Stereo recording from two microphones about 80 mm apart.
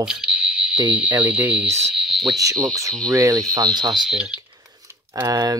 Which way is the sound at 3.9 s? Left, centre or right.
Centre.